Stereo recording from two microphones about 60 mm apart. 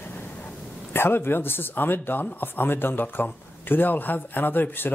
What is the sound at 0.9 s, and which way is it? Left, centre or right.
Speech, left.